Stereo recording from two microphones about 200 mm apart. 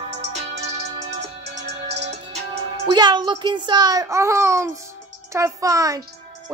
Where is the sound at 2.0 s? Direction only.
35° right (ahead or behind).